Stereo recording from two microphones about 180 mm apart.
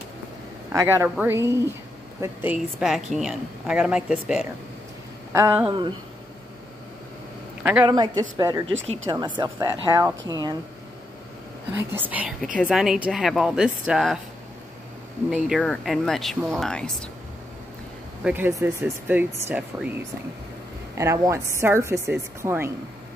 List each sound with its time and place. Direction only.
0.7 s a man's voice: 15° right (ahead or behind)
5.7 s speech: 25° right (ahead or behind)
7.8 s speech: 25° right (ahead or behind)
11.7 s a woman's voice: 10° right (ahead or behind)
15.2 s a woman's voice: centre (ahead or behind)
18.2 s speech: 10° right (ahead or behind)